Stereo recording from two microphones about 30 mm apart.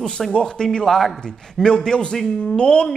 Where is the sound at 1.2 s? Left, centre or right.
Left.